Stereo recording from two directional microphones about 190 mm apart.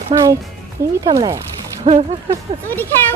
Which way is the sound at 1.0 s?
20° right (ahead or behind).